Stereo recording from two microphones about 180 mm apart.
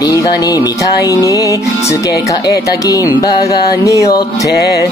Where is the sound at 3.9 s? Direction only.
15° left (ahead or behind).